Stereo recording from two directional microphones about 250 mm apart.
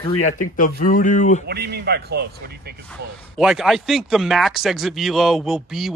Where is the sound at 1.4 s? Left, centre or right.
Right.